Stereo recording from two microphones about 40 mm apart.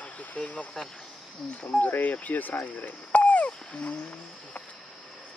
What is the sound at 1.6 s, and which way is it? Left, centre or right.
Speech, left.